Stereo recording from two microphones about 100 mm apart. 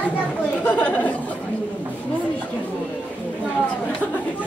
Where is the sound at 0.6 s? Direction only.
15° left (ahead or behind).